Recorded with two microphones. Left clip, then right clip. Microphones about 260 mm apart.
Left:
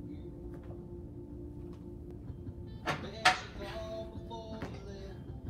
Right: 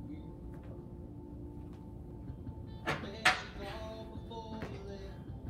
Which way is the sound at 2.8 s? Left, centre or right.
Centre.